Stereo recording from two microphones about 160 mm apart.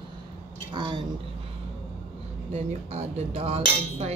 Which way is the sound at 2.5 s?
40° right (ahead or behind).